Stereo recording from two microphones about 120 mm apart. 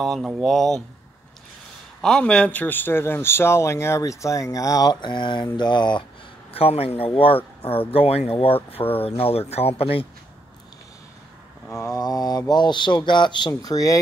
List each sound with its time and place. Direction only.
0.0 s speech: centre (ahead or behind)
2.0 s a man's voice: 5° left (ahead or behind); by 5.5 s 40° left (ahead or behind)
5.6 s a sound: 40° left (ahead or behind)
6.5 s speech: 55° left (ahead or behind)
11.8 s speech: 30° left (ahead or behind)